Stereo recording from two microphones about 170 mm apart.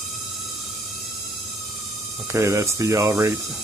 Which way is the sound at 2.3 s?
15° right (ahead or behind).